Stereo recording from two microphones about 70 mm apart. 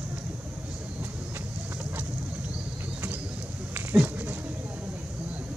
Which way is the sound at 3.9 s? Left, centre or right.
Centre.